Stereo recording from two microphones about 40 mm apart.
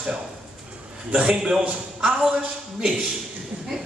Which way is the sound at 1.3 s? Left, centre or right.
Centre.